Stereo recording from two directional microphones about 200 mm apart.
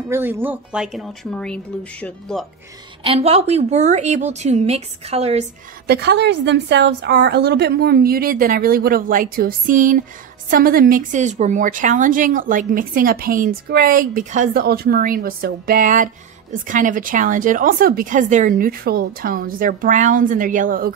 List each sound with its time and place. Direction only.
0.1 s speech: 10° right (ahead or behind)
3.0 s speech: 30° right (ahead or behind)
5.9 s a woman's voice: 55° right (ahead or behind)